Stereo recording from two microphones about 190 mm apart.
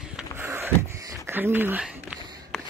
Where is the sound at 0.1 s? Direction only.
10° right (ahead or behind).